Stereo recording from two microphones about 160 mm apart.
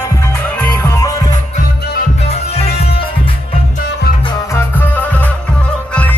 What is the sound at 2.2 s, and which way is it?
Music, 40° left (ahead or behind).